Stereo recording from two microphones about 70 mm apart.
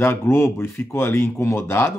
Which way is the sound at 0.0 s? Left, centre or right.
Left.